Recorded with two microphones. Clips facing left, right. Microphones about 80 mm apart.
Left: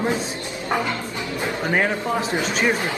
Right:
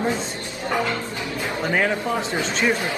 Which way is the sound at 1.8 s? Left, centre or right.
Centre.